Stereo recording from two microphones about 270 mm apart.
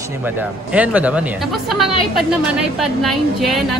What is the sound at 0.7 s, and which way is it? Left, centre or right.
Speech, centre.